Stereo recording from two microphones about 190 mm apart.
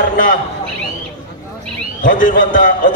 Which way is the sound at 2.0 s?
45° left (ahead or behind).